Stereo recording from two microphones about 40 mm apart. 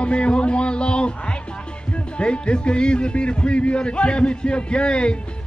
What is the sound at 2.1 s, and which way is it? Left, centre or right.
A man's voice, left.